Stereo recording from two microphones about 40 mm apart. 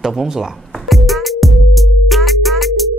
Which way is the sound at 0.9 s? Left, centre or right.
Centre.